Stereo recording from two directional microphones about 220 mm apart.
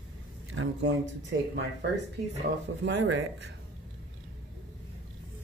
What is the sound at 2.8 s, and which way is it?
Speech, 55° right (ahead or behind).